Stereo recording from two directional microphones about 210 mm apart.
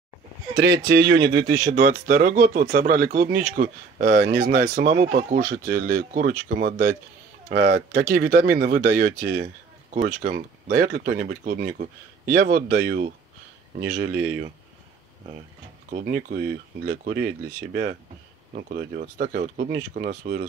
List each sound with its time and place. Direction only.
0.6 s speech: 50° right (ahead or behind)
15.9 s speech: 40° right (ahead or behind)
18.5 s speech: 40° right (ahead or behind)